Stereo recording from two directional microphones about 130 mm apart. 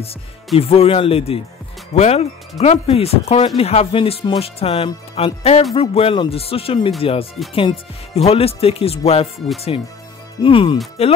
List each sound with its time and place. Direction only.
0.6 s speech: 45° left (ahead or behind)
10.4 s speech: 40° left (ahead or behind)
11.0 s speech: 55° left (ahead or behind)